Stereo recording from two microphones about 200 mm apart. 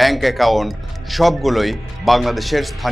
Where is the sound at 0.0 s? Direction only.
Centre (ahead or behind).